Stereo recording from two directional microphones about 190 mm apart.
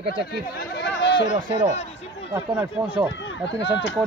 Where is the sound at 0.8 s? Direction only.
65° left (ahead or behind).